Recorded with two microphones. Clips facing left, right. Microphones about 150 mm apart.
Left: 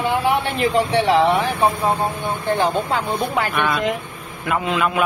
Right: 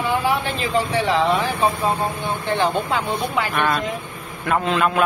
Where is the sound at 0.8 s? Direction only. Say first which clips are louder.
Left 3 dB; 70° left (ahead or behind).